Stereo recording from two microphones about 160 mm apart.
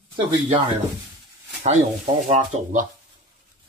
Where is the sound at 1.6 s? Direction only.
45° right (ahead or behind).